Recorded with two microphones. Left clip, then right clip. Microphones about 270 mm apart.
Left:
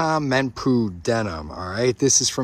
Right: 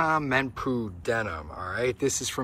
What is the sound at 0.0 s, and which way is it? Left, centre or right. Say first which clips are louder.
Speech: left 4 dB; centre.